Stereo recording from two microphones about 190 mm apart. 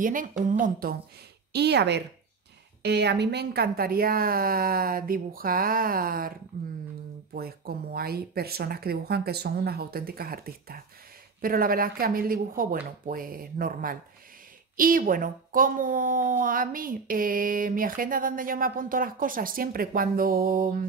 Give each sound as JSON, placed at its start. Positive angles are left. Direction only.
{"t": 0.0, "sound": "a woman's voice", "side_deg": -45}
{"t": 1.5, "sound": "a woman's voice", "side_deg": -60}
{"t": 7.3, "sound": "a woman's voice", "side_deg": -50}